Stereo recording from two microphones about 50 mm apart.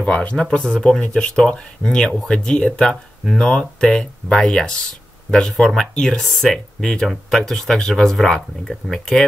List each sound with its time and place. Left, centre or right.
0.0 s speech: left; by 9.0 s centre